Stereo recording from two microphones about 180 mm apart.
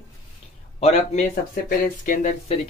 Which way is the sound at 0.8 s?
35° left (ahead or behind).